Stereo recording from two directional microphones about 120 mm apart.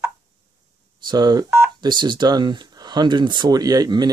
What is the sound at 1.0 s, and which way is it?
Speech, 35° right (ahead or behind).